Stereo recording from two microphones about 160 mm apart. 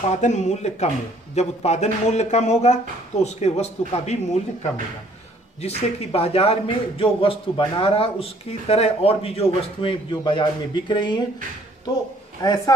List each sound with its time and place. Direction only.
0.1 s speech: 45° left (ahead or behind)
5.6 s a man's voice: 40° left (ahead or behind)
12.4 s speech: 25° left (ahead or behind)